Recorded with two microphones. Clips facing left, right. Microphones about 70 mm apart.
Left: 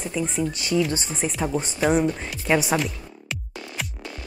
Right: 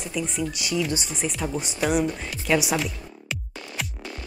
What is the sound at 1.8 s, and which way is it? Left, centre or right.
Speech, centre.